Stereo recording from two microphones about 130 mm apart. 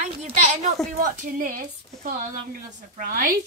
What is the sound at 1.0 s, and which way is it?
A woman's voice, 90° right.